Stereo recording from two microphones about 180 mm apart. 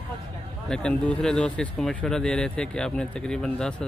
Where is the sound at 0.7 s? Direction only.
5° left (ahead or behind).